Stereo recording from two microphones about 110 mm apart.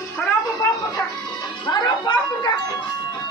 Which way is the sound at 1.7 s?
40° left (ahead or behind).